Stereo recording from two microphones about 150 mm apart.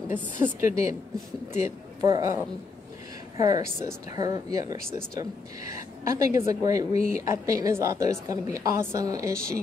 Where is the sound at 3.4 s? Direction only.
20° right (ahead or behind).